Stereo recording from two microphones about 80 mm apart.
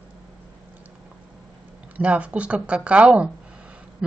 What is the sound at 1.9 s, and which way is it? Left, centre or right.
Speech, centre.